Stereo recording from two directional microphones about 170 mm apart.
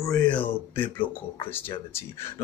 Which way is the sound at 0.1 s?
5° left (ahead or behind).